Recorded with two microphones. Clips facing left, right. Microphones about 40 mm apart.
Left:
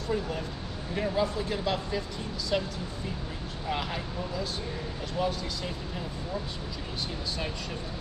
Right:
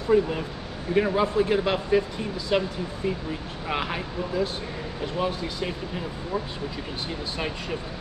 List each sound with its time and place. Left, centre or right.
0.1 s speech: right